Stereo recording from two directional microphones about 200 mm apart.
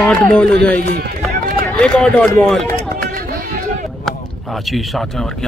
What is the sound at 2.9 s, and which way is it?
Chatter, 45° right (ahead or behind).